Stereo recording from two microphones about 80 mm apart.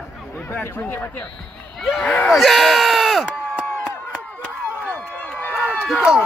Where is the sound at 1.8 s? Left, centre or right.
Centre.